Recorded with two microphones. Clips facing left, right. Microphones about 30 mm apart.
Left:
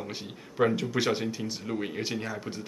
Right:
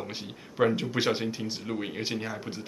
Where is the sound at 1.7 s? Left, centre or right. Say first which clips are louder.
Left 1 dB; centre.